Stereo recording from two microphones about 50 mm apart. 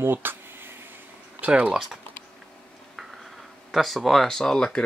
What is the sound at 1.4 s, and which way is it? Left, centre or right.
Speech, right.